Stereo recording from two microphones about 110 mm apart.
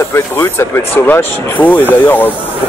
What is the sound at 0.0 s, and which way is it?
Speech, 25° left (ahead or behind).